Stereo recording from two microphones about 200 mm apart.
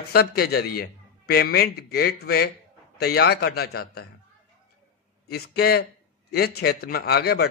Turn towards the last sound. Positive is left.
turn(degrees=50)  # may be behind; listen again after turning